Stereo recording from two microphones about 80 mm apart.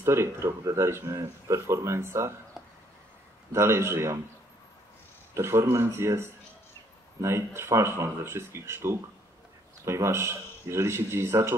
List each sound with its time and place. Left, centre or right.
0.0 s speech: right
2.6 s a sound: centre
3.5 s speech: right
5.3 s speech: right